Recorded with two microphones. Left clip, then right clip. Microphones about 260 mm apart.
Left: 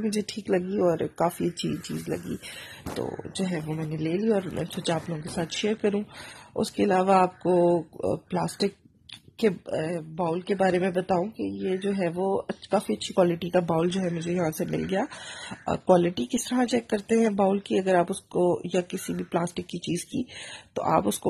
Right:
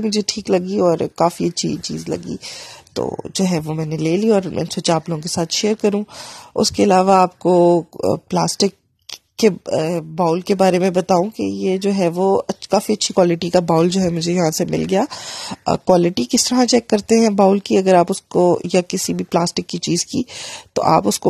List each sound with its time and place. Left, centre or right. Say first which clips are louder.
0.0 s speech: right 10 dB; right